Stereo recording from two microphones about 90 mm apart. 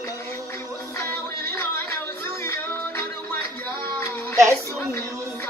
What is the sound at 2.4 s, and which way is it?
Music, 30° left (ahead or behind).